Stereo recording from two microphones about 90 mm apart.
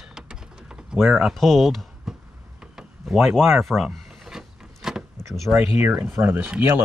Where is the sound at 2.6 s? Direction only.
5° right (ahead or behind).